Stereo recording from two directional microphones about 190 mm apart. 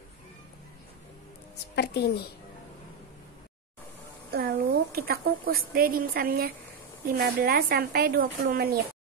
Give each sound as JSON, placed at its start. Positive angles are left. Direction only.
{"t": 1.8, "sound": "a woman's voice", "side_deg": 60}
{"t": 4.3, "sound": "a woman's voice", "side_deg": -55}